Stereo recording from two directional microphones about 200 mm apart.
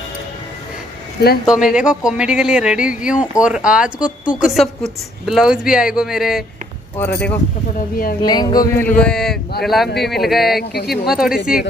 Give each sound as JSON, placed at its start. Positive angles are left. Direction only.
{"t": 1.5, "sound": "speech", "side_deg": -5}
{"t": 7.0, "sound": "speech", "side_deg": 10}
{"t": 7.9, "sound": "a woman's voice", "side_deg": 45}
{"t": 8.3, "sound": "speech", "side_deg": 20}
{"t": 8.7, "sound": "speech", "side_deg": 10}
{"t": 10.6, "sound": "a woman's voice", "side_deg": 50}
{"t": 10.9, "sound": "speech", "side_deg": -5}